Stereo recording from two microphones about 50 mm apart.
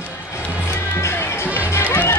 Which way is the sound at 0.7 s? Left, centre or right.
Left.